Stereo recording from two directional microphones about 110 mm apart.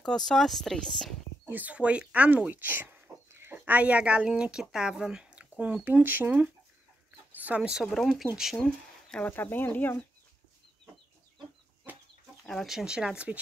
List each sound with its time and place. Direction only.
0.0 s speech: 5° left (ahead or behind)
1.4 s speech: 15° right (ahead or behind)
7.8 s speech: centre (ahead or behind)
12.4 s speech: centre (ahead or behind)